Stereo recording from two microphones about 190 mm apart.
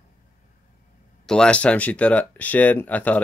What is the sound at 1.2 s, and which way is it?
Speech, 5° left (ahead or behind).